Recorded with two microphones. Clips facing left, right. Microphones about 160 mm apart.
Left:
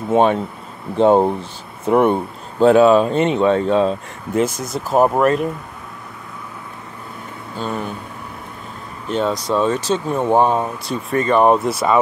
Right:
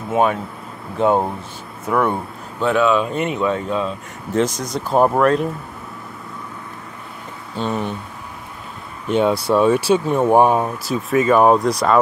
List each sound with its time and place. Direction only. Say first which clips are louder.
0.1 s speech: left 3 dB; 30° left (ahead or behind)
2.6 s speech: left 6 dB; 35° left (ahead or behind)
4.3 s speech: even; 10° left (ahead or behind)
7.5 s speech: right 2 dB; centre (ahead or behind)
9.0 s speech: right 3 dB; 10° right (ahead or behind)